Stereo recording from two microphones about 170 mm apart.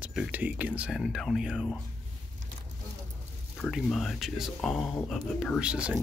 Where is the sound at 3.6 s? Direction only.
Centre (ahead or behind).